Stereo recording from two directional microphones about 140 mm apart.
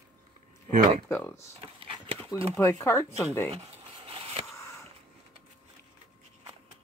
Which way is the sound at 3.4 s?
50° right (ahead or behind).